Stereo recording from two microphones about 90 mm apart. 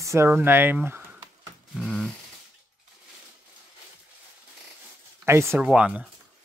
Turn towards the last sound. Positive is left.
turn(degrees=-10)  # may be behind; listen again after turning